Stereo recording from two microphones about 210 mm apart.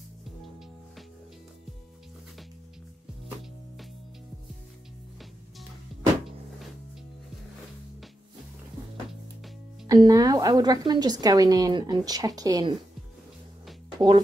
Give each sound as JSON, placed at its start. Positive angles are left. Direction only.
{"t": 9.8, "sound": "a woman's voice", "side_deg": -15}
{"t": 13.9, "sound": "speech", "side_deg": -25}